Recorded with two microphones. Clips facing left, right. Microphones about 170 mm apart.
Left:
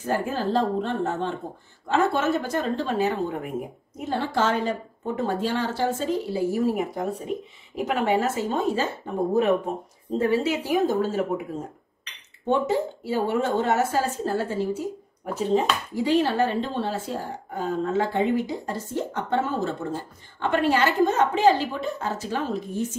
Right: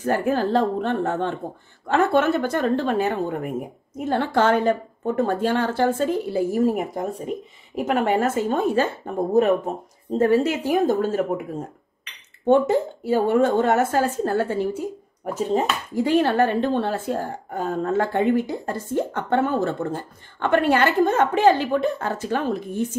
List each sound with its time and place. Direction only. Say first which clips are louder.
0.0 s speech: right 4 dB; 60° right (ahead or behind)
10.1 s speech: right 4 dB; 45° right (ahead or behind)
12.4 s speech: right 5 dB; 50° right (ahead or behind)